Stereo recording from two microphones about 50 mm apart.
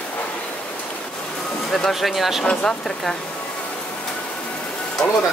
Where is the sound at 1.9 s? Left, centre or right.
Centre.